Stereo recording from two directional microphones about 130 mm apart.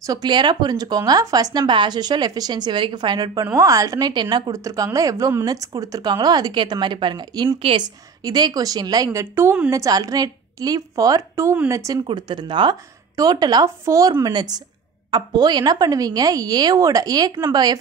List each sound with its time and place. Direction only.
0.0 s speech: 30° right (ahead or behind)
3.4 s a woman's voice: 25° right (ahead or behind); by 7.8 s 45° right (ahead or behind)
7.8 s a woman's voice: 30° right (ahead or behind)
12.1 s speech: 35° right (ahead or behind)